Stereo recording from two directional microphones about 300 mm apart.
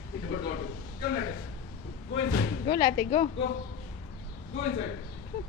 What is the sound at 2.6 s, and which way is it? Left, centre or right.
Speech, left.